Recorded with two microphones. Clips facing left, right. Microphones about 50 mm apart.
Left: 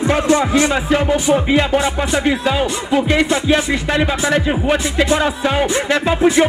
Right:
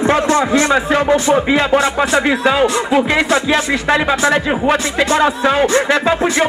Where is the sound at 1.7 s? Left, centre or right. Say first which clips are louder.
Right 3 dB; right.